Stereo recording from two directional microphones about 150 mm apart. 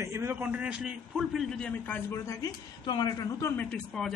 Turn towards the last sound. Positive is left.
turn(degrees=5)  # may be behind; listen again after turning